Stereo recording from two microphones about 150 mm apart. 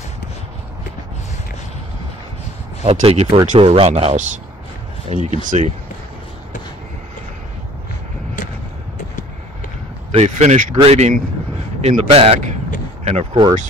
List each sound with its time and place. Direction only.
2.8 s speech: 40° right (ahead or behind)
5.1 s speech: 55° right (ahead or behind)
10.1 s speech: 50° right (ahead or behind); by 13.6 s 35° right (ahead or behind)